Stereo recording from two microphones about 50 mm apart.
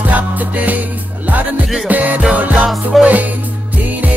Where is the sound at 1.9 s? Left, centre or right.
Right.